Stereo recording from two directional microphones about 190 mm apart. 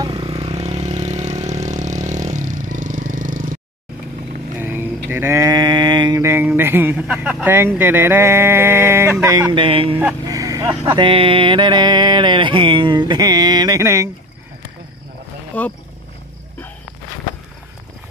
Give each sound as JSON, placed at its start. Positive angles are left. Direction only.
{"t": 0.0, "sound": "vehicle", "side_deg": -25}
{"t": 4.6, "sound": "speech", "side_deg": -10}
{"t": 9.9, "sound": "vehicle", "side_deg": -15}
{"t": 10.8, "sound": "a sound", "side_deg": -25}
{"t": 15.5, "sound": "speech", "side_deg": 5}